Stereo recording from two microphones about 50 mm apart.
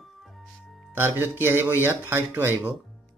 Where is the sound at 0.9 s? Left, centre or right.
Right.